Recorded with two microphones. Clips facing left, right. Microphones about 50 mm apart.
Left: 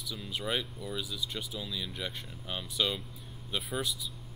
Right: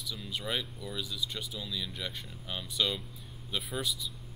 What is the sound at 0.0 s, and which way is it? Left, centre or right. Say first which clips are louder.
Speech: left 1 dB; centre.